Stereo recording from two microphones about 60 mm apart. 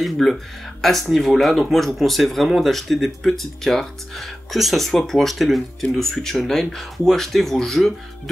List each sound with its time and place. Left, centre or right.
0.0 s speech: centre